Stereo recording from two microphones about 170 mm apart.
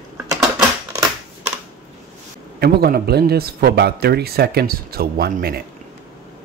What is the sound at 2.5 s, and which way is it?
Speech, 65° right (ahead or behind).